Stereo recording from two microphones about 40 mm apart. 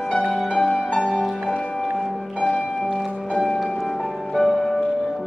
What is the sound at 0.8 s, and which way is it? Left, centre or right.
Music, left.